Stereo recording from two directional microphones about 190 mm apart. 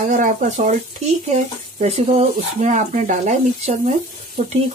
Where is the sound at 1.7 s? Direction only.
35° right (ahead or behind).